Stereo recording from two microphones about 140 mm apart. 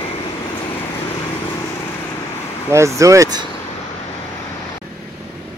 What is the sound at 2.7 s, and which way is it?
Speech, 20° right (ahead or behind).